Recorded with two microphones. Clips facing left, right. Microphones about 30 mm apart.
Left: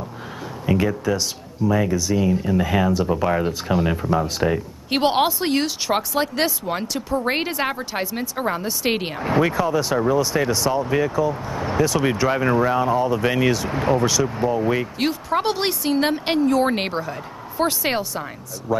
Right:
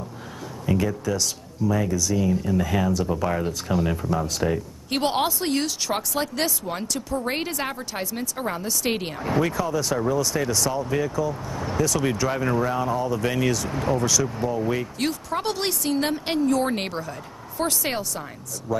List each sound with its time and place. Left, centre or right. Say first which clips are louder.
0.7 s a man's voice: left 4 dB; left